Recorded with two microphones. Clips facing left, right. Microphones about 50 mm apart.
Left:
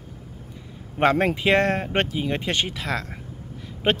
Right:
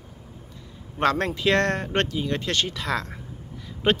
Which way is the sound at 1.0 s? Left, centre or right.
Centre.